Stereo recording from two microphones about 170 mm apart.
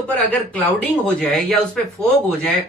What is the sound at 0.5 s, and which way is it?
Speech, 5° left (ahead or behind).